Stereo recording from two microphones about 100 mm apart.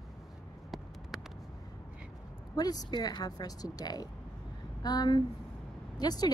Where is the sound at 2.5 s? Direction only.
40° left (ahead or behind).